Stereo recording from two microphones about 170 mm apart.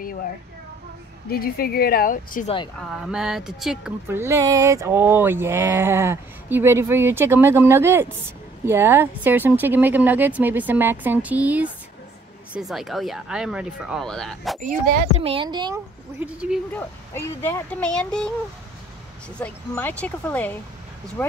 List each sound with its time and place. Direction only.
0.0 s a sound: 55° left (ahead or behind)
1.3 s a woman's voice: 60° left (ahead or behind)
2.4 s speech: 30° left (ahead or behind)
2.8 s speech: centre (ahead or behind)
4.2 s speech: 15° right (ahead or behind); by 14.6 s centre (ahead or behind)
14.6 s speech: 45° right (ahead or behind); by 15.8 s 25° right (ahead or behind)
16.2 s speech: 5° right (ahead or behind)
16.7 s speech: 15° left (ahead or behind)
19.4 s speech: 10° left (ahead or behind)